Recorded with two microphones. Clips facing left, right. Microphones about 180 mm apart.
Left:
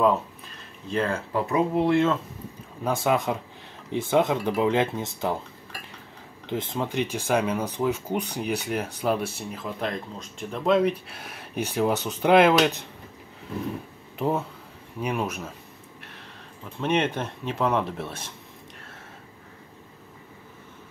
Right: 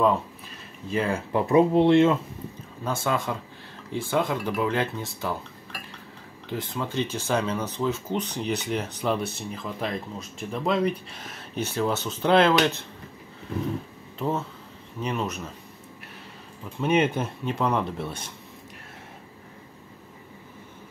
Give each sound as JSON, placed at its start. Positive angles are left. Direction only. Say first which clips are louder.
{"t": 0.0, "sound": "speech", "louder": "left 1 dB", "side_deg": -5}
{"t": 1.3, "sound": "speech", "louder": "right 6 dB", "side_deg": -25}
{"t": 2.8, "sound": "speech", "louder": "left 3 dB", "side_deg": 15}
{"t": 6.5, "sound": "speech", "louder": "left 2 dB", "side_deg": 20}
{"t": 14.1, "sound": "speech", "louder": "left 2 dB", "side_deg": 15}
{"t": 16.8, "sound": "speech", "louder": "right 2 dB", "side_deg": -5}